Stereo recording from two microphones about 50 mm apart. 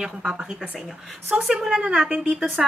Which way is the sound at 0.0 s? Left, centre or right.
Centre.